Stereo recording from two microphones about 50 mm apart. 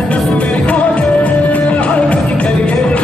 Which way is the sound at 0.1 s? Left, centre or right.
Left.